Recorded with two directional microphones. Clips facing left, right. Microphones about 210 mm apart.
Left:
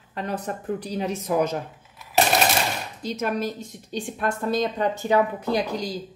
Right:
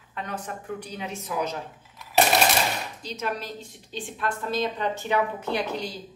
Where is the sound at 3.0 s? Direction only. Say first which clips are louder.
Left 7 dB; 50° left (ahead or behind).